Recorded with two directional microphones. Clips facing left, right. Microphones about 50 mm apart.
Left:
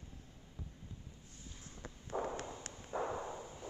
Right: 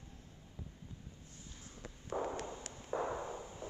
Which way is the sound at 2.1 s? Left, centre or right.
Centre.